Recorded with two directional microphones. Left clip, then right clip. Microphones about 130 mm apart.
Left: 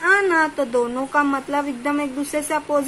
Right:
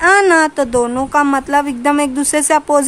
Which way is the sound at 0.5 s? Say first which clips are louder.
Right 6 dB; 80° right.